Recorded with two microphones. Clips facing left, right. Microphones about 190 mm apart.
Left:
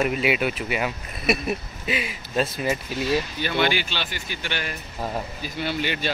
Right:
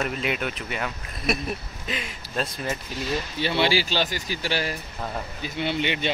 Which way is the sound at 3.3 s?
30° right (ahead or behind).